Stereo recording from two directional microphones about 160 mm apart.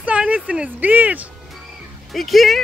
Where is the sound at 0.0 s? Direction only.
10° right (ahead or behind).